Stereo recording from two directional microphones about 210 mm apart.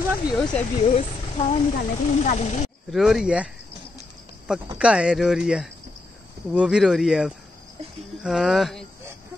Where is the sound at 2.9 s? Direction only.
Centre (ahead or behind).